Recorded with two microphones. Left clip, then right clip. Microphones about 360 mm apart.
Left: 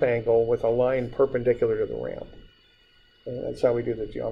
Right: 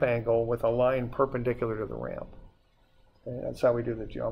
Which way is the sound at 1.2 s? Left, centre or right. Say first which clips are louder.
Left 5 dB; right.